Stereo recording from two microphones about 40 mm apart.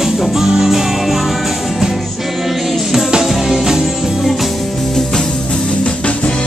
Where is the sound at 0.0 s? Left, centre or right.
Centre.